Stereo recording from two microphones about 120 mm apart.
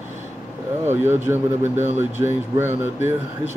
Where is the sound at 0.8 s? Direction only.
20° right (ahead or behind).